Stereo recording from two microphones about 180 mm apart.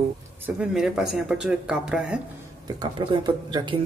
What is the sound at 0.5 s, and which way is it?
Speech, 5° right (ahead or behind).